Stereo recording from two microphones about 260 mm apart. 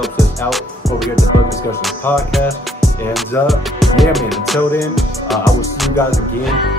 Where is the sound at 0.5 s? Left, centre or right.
Centre.